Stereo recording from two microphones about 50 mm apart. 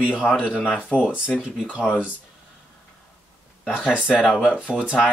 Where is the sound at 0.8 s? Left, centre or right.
Left.